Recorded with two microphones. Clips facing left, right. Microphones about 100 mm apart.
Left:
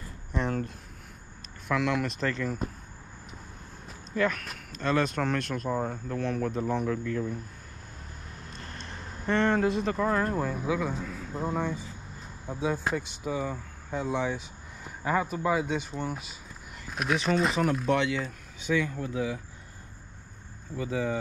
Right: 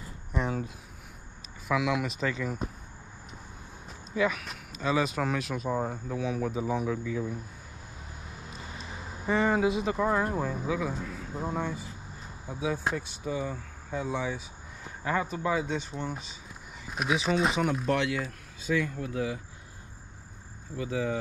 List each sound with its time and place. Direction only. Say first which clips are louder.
0.3 s a sound: left 1 dB; 5° right (ahead or behind)
1.7 s speech: even; 5° right (ahead or behind)
4.1 s speech: even; 5° right (ahead or behind)
8.3 s a sound: even; 5° right (ahead or behind)
10.4 s speech: left 1 dB; centre (ahead or behind)
15.2 s speech: left 2 dB; 5° left (ahead or behind)
18.7 s speech: left 1 dB; 75° left (ahead or behind)
19.0 s speech: left 1 dB; centre (ahead or behind)
20.7 s speech: left 1 dB; centre (ahead or behind)